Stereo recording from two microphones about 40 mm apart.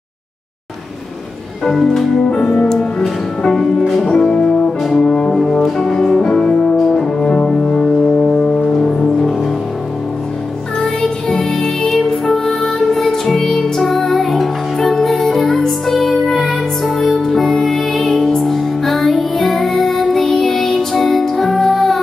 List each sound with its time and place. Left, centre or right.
1.7 s music: centre
2.3 s music: centre
5.0 s brass instrument: centre
5.3 s music: centre; by 6.8 s left
6.8 s music: centre
7.2 s music: left
8.3 s music: centre
11.9 s music: centre